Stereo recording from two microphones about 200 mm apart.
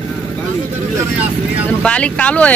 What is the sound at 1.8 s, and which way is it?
Speech, 5° left (ahead or behind).